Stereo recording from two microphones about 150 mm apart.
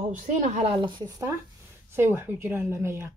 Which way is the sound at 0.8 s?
25° right (ahead or behind).